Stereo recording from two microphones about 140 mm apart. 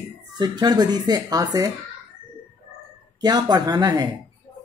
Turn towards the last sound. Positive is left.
turn(degrees=-25)  # may be behind; listen again after turning